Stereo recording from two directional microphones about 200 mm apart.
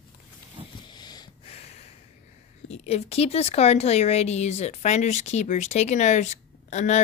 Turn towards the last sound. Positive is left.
turn(degrees=35)  # may be behind; listen again after turning